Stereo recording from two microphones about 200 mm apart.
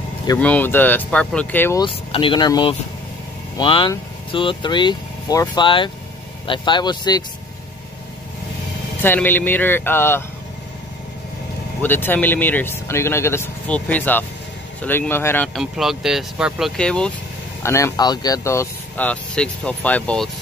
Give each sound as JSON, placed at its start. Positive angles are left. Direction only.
{"t": 0.4, "sound": "speech", "side_deg": 10}
{"t": 1.8, "sound": "speech", "side_deg": 25}
{"t": 9.0, "sound": "speech", "side_deg": 10}
{"t": 11.8, "sound": "speech", "side_deg": 10}
{"t": 17.6, "sound": "speech", "side_deg": 15}